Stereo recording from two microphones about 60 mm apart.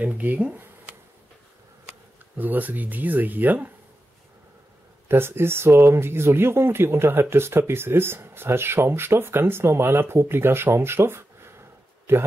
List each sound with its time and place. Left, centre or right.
0.0 s speech: right
2.3 s speech: right
5.0 s speech: right